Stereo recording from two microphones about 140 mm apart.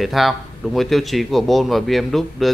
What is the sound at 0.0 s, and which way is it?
Speech, centre (ahead or behind).